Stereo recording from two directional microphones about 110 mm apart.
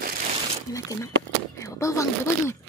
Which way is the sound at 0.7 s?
30° left (ahead or behind).